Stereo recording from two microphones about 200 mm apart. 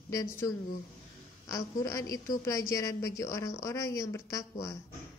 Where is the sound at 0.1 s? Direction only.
15° left (ahead or behind).